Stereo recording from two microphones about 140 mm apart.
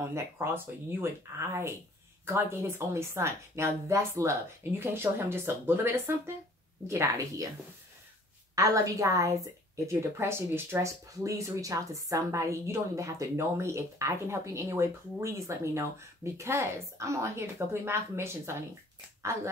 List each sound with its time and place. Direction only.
0.0 s speech: 15° right (ahead or behind)
8.5 s speech: 25° right (ahead or behind)